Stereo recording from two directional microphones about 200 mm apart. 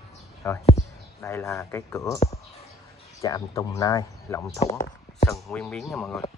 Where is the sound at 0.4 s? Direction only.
15° left (ahead or behind).